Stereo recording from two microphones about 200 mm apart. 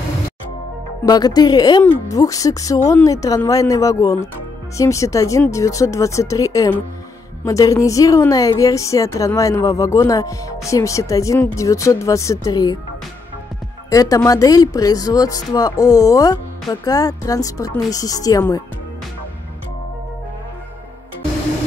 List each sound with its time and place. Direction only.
1.0 s a woman's voice: 20° left (ahead or behind)
13.8 s a woman's voice: 15° left (ahead or behind)